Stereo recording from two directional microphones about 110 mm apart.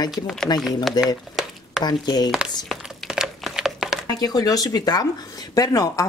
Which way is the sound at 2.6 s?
Centre (ahead or behind).